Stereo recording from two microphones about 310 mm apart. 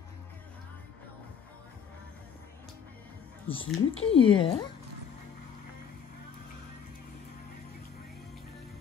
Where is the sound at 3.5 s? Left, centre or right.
Centre.